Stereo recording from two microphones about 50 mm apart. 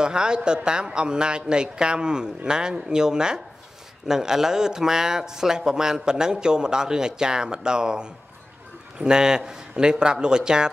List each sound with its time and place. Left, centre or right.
0.0 s a man's voice: centre